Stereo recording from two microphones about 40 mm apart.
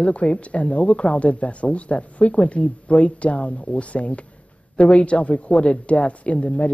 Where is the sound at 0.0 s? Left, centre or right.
Left.